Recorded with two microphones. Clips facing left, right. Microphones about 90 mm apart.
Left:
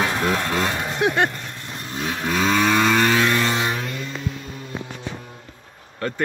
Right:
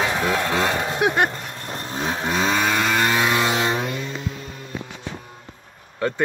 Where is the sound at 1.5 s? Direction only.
40° right (ahead or behind); by 2.6 s 15° right (ahead or behind).